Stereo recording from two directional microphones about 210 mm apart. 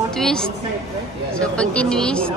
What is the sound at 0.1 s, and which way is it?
A woman's voice, 5° left (ahead or behind).